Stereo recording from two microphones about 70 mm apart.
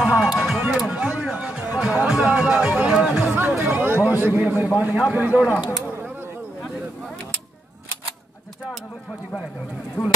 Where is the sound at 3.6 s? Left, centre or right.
Right.